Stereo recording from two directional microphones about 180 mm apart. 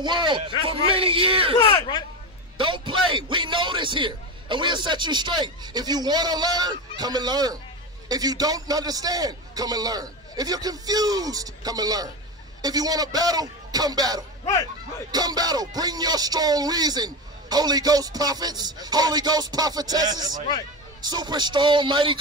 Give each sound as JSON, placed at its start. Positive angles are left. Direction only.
{"t": 0.0, "sound": "music", "side_deg": -25}
{"t": 1.6, "sound": "speech", "side_deg": 30}
{"t": 2.5, "sound": "music", "side_deg": -25}